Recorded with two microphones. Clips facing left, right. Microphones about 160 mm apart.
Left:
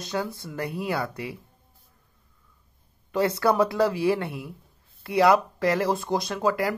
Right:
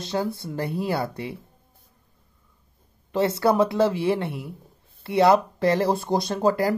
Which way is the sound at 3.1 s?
25° right (ahead or behind).